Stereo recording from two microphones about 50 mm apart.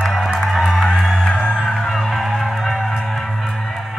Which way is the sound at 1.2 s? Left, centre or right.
Centre.